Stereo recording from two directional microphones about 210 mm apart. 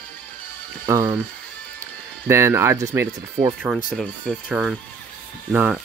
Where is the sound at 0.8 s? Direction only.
15° right (ahead or behind).